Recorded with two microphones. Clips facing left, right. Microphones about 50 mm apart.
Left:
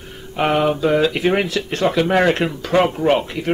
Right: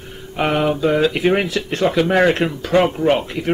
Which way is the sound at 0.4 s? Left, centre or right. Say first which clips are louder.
Left 1 dB; centre.